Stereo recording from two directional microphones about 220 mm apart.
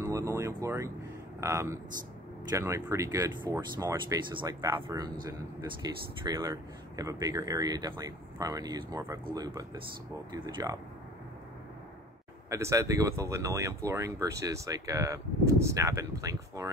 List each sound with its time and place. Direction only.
0.0 s a sound: 15° right (ahead or behind)
1.4 s speech: 15° right (ahead or behind)
12.4 s speech: 15° right (ahead or behind)